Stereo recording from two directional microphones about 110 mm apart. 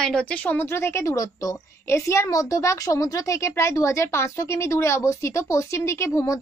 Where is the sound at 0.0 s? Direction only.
10° left (ahead or behind).